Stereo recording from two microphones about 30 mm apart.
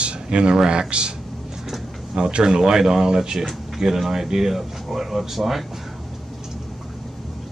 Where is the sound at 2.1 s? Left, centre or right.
Right.